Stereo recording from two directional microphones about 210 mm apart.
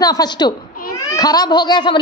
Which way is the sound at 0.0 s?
20° left (ahead or behind).